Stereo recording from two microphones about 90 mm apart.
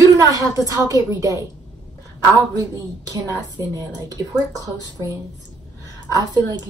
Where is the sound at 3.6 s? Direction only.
35° right (ahead or behind).